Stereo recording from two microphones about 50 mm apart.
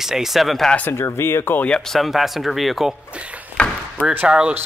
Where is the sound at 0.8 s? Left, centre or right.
Left.